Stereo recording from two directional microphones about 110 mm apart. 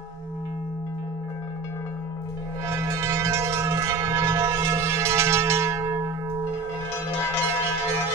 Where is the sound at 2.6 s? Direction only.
25° right (ahead or behind).